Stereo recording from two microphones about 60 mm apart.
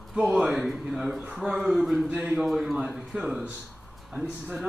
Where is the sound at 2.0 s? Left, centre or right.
Centre.